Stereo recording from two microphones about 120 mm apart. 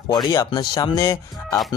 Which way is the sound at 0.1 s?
30° left (ahead or behind).